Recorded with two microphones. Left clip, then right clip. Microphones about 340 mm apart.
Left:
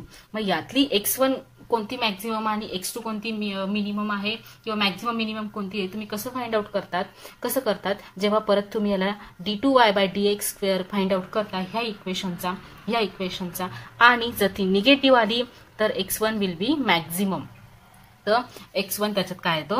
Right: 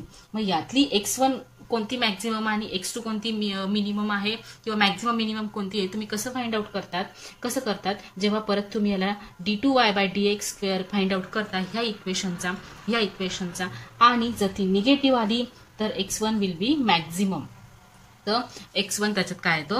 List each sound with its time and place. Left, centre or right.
0.3 s a woman's voice: left; by 19.8 s centre